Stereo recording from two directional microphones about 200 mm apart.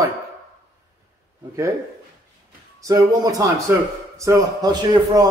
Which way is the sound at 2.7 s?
15° right (ahead or behind).